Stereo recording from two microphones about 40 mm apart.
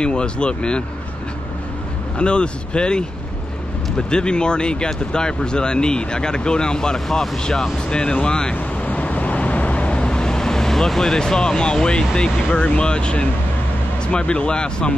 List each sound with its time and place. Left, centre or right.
0.0 s speech: left
2.1 s speech: left
4.1 s speech: left
7.9 s speech: left
8.5 s vehicle: left
12.4 s speech: left